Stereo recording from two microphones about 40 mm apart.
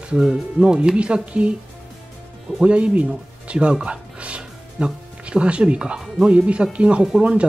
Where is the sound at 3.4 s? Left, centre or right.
Right.